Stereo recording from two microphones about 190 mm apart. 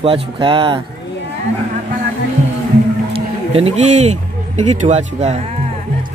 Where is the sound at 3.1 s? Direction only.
30° right (ahead or behind).